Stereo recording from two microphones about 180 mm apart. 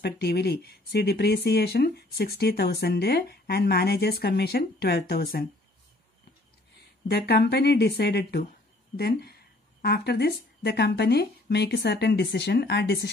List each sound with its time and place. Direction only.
0.0 s speech: 65° left (ahead or behind)
7.1 s speech: 65° left (ahead or behind)